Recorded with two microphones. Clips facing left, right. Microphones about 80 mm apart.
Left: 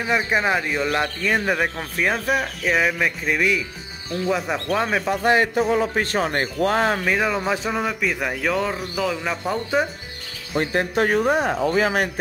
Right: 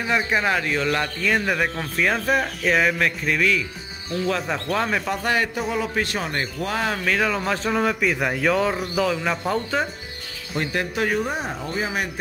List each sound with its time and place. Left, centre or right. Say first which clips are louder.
0.0 s a man's voice: left 1 dB; centre
3.3 s a man's voice: even; centre
5.2 s speech: left 5 dB; left
7.1 s speech: left 1 dB; centre
10.6 s speech: left 3 dB; left
11.1 s speech: left 5 dB; left
11.6 s speech: left 8 dB; left